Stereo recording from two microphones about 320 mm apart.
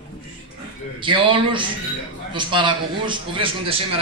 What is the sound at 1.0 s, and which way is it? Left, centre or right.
A man's voice, centre.